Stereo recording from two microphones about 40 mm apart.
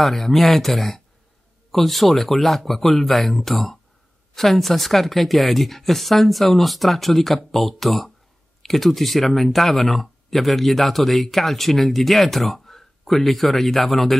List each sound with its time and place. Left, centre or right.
0.0 s speech: centre